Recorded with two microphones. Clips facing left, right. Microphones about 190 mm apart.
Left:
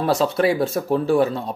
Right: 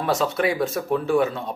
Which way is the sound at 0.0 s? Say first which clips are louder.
Left 3 dB; 30° left (ahead or behind).